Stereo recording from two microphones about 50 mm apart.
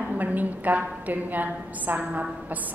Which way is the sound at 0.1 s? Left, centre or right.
Right.